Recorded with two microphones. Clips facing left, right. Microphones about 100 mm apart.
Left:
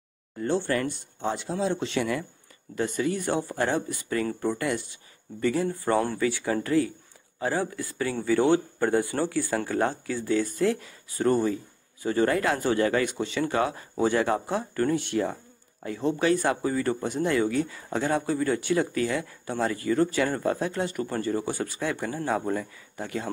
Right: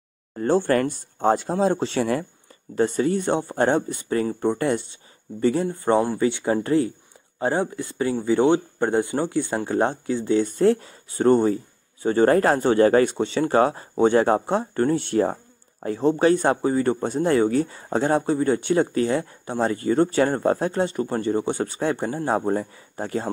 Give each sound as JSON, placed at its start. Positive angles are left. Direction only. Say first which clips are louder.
{"t": 0.4, "sound": "speech", "louder": "right 6 dB", "side_deg": -45}
{"t": 3.0, "sound": "speech", "louder": "right 5 dB", "side_deg": -30}